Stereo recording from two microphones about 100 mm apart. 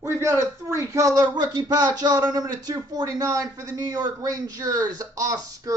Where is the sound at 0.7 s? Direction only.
30° right (ahead or behind).